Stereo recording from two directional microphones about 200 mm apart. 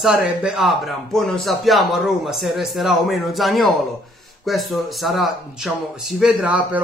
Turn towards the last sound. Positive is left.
turn(degrees=-5)  # may be behind; listen again after turning